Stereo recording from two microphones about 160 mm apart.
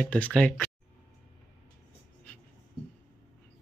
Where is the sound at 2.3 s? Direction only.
10° left (ahead or behind).